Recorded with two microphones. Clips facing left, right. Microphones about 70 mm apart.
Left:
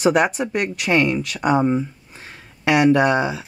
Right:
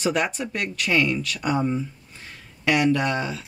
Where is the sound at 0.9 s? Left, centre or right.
Left.